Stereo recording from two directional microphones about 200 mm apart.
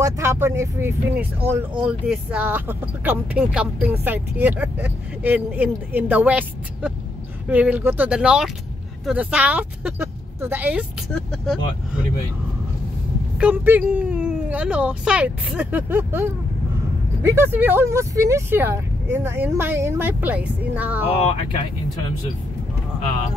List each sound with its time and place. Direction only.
0.0 s speech: 15° right (ahead or behind); by 11.5 s centre (ahead or behind)
13.4 s speech: 10° right (ahead or behind)